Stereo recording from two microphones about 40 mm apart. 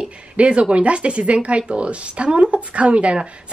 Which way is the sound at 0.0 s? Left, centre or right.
Right.